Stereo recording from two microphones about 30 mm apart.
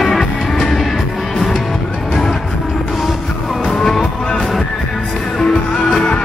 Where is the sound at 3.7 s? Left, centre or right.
Centre.